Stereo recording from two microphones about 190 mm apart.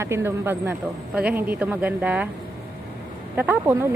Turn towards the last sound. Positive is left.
turn(degrees=-10)  # may be behind; listen again after turning